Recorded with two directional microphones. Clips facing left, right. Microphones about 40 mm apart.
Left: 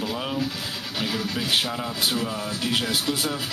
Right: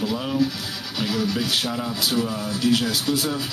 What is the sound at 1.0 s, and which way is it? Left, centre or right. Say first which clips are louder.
Speech: right 4 dB; left.